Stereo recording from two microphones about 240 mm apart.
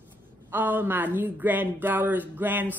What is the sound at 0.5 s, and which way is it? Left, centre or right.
Speech, centre.